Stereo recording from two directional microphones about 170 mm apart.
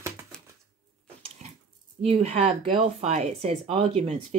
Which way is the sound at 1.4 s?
40° right (ahead or behind).